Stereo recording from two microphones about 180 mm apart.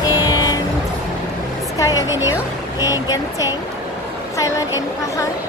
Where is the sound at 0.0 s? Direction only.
20° left (ahead or behind).